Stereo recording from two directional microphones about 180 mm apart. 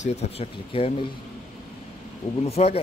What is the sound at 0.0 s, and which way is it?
Speech, 35° left (ahead or behind).